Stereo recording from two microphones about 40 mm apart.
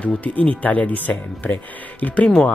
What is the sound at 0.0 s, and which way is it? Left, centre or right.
Speech, left.